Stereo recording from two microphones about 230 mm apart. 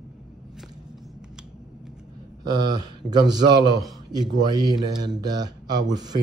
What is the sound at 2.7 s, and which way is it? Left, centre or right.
Speech, centre.